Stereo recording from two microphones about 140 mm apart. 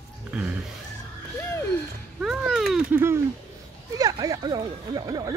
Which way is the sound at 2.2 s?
Centre (ahead or behind).